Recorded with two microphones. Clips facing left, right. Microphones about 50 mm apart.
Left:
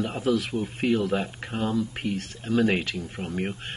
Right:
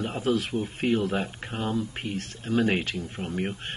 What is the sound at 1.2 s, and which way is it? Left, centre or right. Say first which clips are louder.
Speech: left 2 dB; centre.